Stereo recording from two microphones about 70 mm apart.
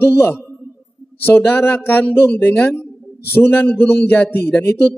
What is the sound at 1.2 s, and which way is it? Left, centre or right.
Speech, left.